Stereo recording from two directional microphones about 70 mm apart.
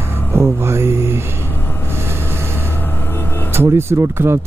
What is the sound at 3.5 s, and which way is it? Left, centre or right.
Speech, right.